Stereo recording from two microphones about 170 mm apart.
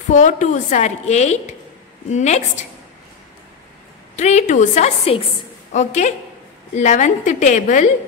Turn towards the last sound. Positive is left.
turn(degrees=50)  # may be behind; listen again after turning